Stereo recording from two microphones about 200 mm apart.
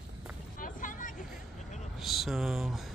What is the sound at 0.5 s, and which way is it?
Vehicle, 40° left (ahead or behind).